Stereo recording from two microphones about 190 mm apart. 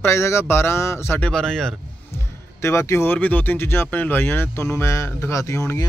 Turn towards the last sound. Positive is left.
turn(degrees=15)  # may be behind; listen again after turning